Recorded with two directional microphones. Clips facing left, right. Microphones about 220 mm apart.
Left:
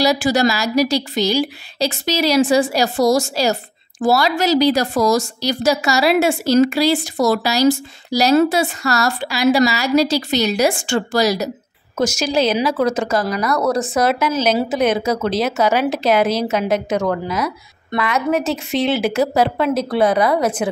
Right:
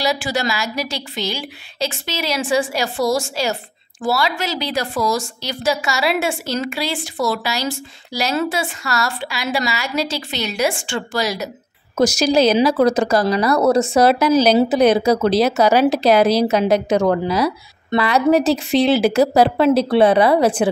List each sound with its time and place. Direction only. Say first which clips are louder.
0.0 s a woman's voice: left 5 dB; 40° left (ahead or behind)
12.0 s speech: right 3 dB; 35° right (ahead or behind)